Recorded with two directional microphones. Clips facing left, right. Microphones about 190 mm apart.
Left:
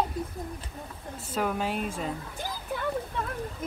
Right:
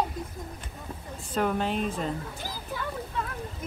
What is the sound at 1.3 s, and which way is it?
Speech, 5° left (ahead or behind).